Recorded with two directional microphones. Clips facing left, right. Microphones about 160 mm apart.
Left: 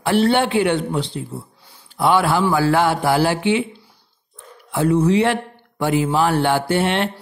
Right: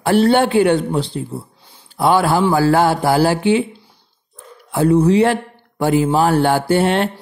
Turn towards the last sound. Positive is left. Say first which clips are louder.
# right 4 dB
turn(degrees=-40)  # may be behind; listen again after turning